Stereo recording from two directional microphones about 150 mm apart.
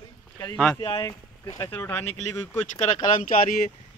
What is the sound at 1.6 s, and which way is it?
Speech, 15° left (ahead or behind).